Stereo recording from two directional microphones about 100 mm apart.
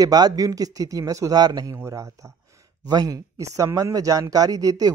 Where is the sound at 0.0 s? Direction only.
40° right (ahead or behind).